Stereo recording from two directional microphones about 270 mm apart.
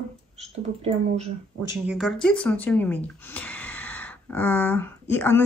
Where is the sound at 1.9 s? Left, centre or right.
Centre.